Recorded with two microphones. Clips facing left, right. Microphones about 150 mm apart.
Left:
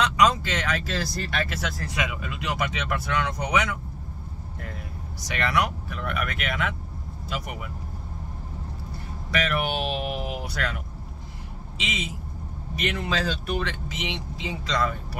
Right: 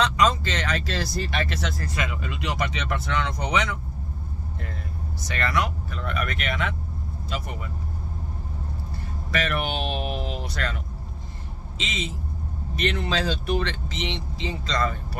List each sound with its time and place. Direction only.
0.0 s speech: 10° left (ahead or behind)
5.2 s speech: 15° left (ahead or behind)
9.5 s speech: 10° left (ahead or behind)
11.8 s speech: 10° left (ahead or behind)